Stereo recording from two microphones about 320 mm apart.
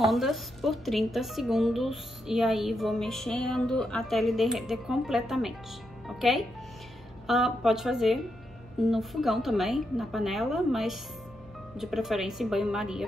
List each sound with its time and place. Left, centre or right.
0.0 s speech: centre